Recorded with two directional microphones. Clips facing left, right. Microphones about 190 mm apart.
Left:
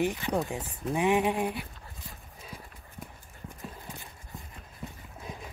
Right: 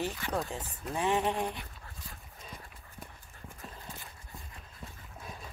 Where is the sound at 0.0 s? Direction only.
15° left (ahead or behind).